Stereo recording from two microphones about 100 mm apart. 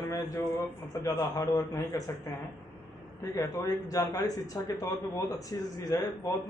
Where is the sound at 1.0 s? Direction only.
35° left (ahead or behind).